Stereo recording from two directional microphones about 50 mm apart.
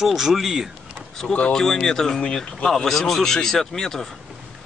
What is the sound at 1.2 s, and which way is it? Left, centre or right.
Speech, centre.